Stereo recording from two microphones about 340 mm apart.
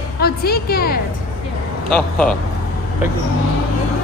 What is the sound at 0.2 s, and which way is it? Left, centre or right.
Speech, left.